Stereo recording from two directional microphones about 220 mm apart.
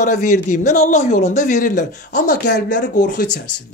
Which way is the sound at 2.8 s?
35° left (ahead or behind).